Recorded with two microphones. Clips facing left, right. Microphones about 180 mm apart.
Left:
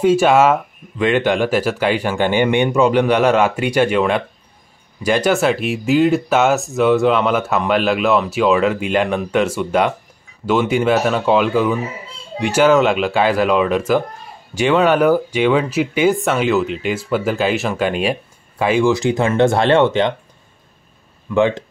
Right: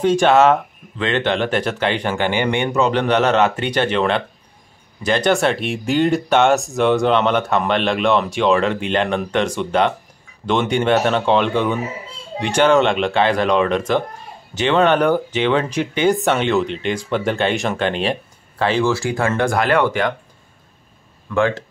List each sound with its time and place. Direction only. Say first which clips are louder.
0.0 s speech: left 1 dB; 10° left (ahead or behind); by 20.2 s 25° left (ahead or behind)
21.3 s speech: left 3 dB; 20° left (ahead or behind)